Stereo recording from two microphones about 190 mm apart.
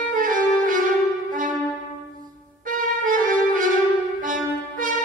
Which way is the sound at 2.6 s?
45° right (ahead or behind).